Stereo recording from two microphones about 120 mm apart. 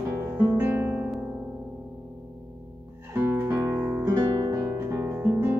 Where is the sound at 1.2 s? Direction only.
10° right (ahead or behind).